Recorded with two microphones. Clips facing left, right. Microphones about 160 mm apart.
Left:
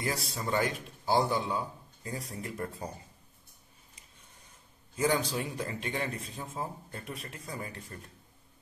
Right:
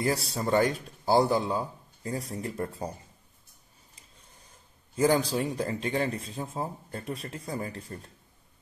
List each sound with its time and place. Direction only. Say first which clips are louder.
0.0 s a man's voice: right 6 dB; 35° right (ahead or behind)
4.9 s a man's voice: right 5 dB; 35° right (ahead or behind)